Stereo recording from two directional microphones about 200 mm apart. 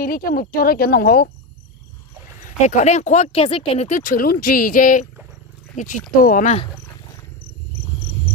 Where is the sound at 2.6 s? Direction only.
35° left (ahead or behind).